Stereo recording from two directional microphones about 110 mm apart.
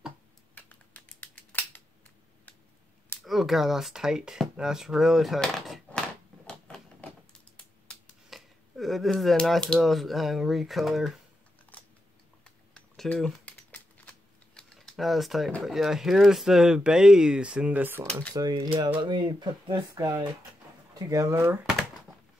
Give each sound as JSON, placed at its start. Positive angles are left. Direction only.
{"t": 0.6, "sound": "typing", "side_deg": 15}
{"t": 3.2, "sound": "a sound", "side_deg": 0}
{"t": 8.3, "sound": "speech", "side_deg": 0}
{"t": 11.7, "sound": "camera", "side_deg": 15}
{"t": 12.4, "sound": "typing", "side_deg": 5}
{"t": 13.7, "sound": "typewriter", "side_deg": 10}
{"t": 15.6, "sound": "speech", "side_deg": -5}
{"t": 18.3, "sound": "speech", "side_deg": -35}
{"t": 21.0, "sound": "speech", "side_deg": -30}